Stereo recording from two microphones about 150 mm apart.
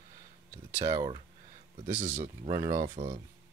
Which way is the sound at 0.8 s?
25° right (ahead or behind).